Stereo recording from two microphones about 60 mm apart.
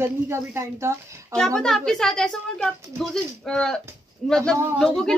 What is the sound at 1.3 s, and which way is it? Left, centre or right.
Speech, centre.